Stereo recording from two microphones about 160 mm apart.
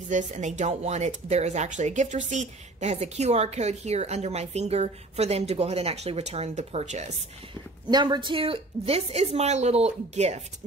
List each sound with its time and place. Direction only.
0.1 s speech: 50° right (ahead or behind)
7.9 s a woman's voice: 30° right (ahead or behind); by 10.4 s 45° right (ahead or behind)